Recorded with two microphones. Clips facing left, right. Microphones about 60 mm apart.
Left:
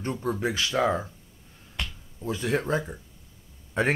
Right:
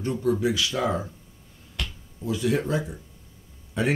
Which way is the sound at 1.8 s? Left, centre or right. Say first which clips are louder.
Even; left.